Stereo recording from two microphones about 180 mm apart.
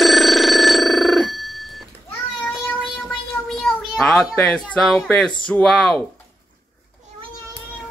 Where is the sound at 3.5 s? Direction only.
Centre (ahead or behind).